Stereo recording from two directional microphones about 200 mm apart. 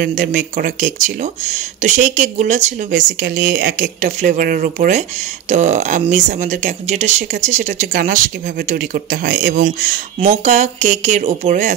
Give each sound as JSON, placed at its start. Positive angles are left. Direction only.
{"t": 0.0, "sound": "speech", "side_deg": -40}